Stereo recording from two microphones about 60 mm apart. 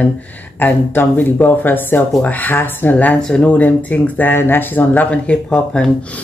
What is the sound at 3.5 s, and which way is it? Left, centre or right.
Speech, left.